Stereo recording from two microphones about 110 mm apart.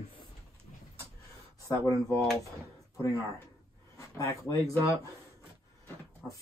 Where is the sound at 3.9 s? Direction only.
30° left (ahead or behind).